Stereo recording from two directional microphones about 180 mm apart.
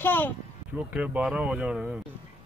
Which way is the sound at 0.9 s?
5° right (ahead or behind).